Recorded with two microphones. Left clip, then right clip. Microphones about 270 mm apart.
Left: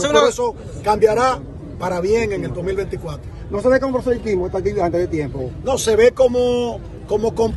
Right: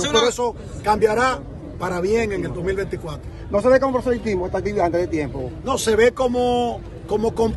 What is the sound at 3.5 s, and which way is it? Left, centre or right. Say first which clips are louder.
A man's voice: even; right.